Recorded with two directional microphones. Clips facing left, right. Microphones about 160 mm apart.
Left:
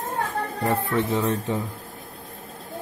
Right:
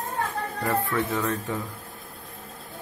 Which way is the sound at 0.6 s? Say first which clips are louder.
Left 2 dB; 20° left (ahead or behind).